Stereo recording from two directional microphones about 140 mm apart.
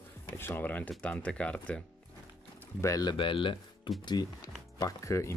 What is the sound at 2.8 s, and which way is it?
Speech, 25° left (ahead or behind).